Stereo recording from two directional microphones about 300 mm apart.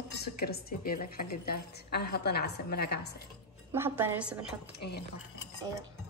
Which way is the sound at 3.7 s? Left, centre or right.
Centre.